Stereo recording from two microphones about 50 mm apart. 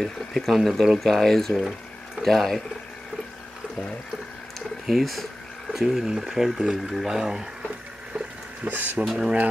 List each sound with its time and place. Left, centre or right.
0.0 s speech: centre
4.6 s a sound: centre
5.7 s speech: centre
8.6 s speech: right
9.0 s speech: centre